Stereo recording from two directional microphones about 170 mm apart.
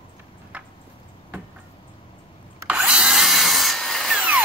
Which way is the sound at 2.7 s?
5° right (ahead or behind).